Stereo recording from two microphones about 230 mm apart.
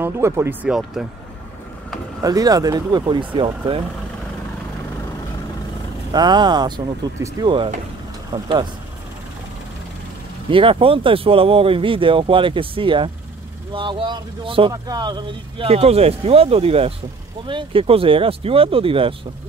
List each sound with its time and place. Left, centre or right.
0.0 s speech: centre
2.2 s speech: centre
6.1 s speech: centre
10.5 s speech: right